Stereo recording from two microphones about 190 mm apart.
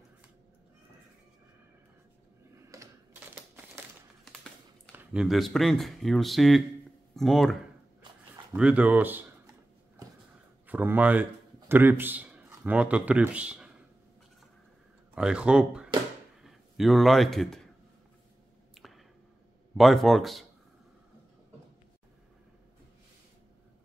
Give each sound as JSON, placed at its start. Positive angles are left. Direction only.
{"t": 2.7, "sound": "typing", "side_deg": -15}
{"t": 4.9, "sound": "speech", "side_deg": -5}
{"t": 8.5, "sound": "speech", "side_deg": -5}
{"t": 10.7, "sound": "speech", "side_deg": -10}
{"t": 15.1, "sound": "a man's voice", "side_deg": -5}
{"t": 18.8, "sound": "finger snapping", "side_deg": 0}
{"t": 19.8, "sound": "speech", "side_deg": 0}